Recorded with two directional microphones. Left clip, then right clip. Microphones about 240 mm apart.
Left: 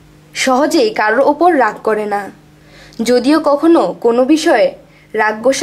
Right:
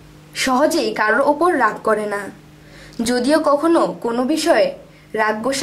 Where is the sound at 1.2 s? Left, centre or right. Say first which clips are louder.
Left 8 dB; left.